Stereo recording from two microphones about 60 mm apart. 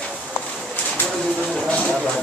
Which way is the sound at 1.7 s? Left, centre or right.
Centre.